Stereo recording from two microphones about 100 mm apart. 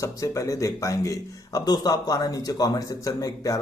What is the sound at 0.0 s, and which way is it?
A man's voice, 35° left (ahead or behind).